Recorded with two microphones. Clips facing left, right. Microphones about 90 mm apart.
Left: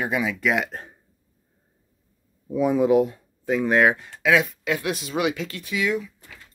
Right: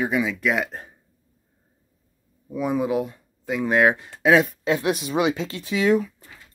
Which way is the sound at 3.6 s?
15° right (ahead or behind).